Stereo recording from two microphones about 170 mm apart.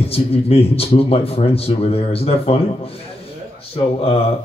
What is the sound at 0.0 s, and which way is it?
Speech, 35° left (ahead or behind).